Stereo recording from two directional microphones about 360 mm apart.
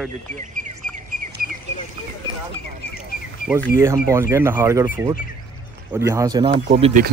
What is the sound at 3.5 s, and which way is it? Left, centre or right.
Speech, centre.